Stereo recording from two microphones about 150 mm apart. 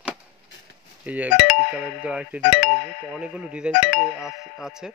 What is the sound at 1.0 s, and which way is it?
Speech, 10° right (ahead or behind).